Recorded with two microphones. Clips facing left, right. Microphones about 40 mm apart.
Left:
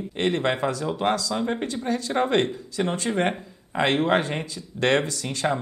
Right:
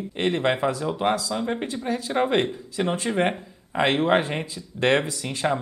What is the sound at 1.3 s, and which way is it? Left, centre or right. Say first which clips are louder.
Speech: left 1 dB; centre.